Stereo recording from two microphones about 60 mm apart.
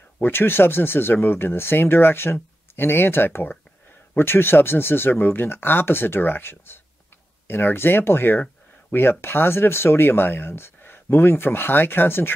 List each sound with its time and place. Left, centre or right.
0.2 s speech: left